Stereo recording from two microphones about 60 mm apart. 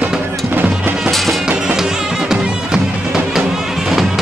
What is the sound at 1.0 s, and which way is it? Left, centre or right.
Music, centre.